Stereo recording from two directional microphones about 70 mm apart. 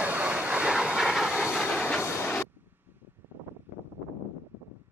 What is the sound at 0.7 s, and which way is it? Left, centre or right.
Train, centre.